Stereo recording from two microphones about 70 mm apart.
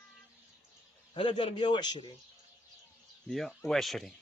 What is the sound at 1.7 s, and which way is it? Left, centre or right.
Speech, left.